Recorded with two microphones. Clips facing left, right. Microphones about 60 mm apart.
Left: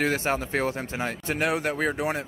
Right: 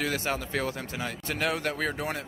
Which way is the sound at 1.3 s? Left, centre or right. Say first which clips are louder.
Left 3 dB; left.